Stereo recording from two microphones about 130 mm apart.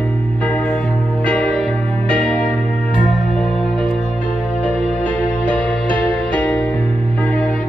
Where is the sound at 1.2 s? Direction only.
10° left (ahead or behind).